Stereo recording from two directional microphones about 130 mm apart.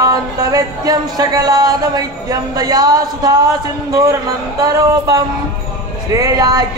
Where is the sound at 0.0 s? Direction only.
30° right (ahead or behind).